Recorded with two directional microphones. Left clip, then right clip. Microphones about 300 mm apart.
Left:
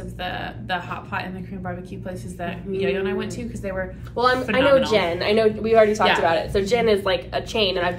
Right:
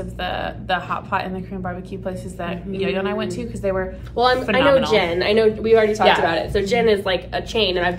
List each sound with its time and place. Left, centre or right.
0.2 s speech: centre
4.1 s a man's voice: centre